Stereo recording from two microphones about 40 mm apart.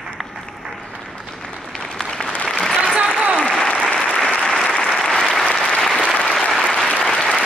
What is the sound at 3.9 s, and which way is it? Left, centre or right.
Applause, left.